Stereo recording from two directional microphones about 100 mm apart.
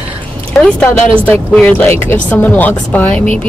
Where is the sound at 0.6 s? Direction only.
10° left (ahead or behind).